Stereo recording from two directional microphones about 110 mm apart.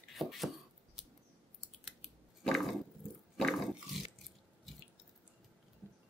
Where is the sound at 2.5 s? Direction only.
Centre (ahead or behind).